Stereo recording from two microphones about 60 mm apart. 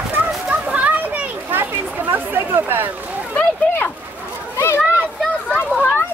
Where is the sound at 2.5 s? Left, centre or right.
Right.